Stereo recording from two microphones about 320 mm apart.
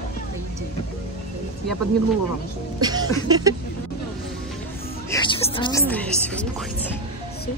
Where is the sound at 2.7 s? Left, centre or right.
Centre.